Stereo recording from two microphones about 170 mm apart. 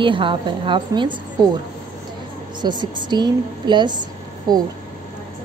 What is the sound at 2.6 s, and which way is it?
A woman's voice, 25° right (ahead or behind).